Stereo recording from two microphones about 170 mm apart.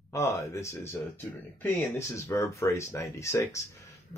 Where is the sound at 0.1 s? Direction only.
15° left (ahead or behind).